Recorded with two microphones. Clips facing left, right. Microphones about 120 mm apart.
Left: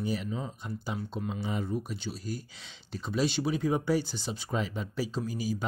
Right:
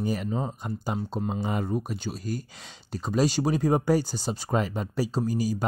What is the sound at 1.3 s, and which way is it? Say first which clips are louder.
Speech: right 4 dB; 60° right (ahead or behind).